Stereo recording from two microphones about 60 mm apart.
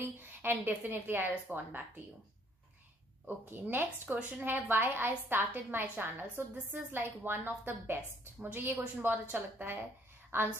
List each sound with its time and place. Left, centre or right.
0.2 s a woman's voice: right
3.3 s a woman's voice: right